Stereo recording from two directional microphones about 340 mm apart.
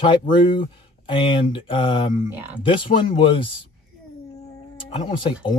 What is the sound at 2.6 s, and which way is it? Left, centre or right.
Speech, centre.